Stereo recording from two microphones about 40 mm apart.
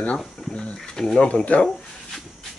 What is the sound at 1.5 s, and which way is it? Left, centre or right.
Speech, left.